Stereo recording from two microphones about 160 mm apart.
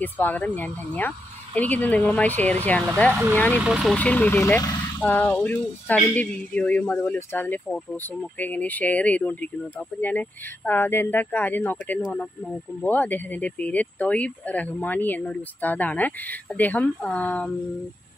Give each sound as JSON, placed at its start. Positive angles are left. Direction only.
{"t": 0.0, "sound": "speech", "side_deg": 10}
{"t": 3.1, "sound": "speech", "side_deg": -5}
{"t": 3.3, "sound": "speech", "side_deg": 10}
{"t": 3.6, "sound": "speech", "side_deg": -5}
{"t": 3.9, "sound": "speech", "side_deg": 10}